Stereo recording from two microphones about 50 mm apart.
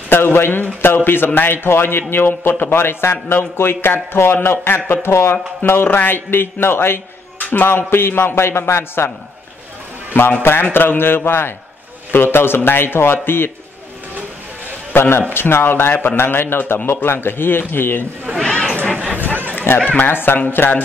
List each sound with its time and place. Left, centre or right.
0.1 s a man's voice: left
5.6 s a man's voice: left
7.3 s a sound: left
7.6 s a man's voice: left
10.4 s a man's voice: left
14.9 s a man's voice: left
18.4 s a sound: centre
19.7 s speech: left
20.0 s a man's voice: left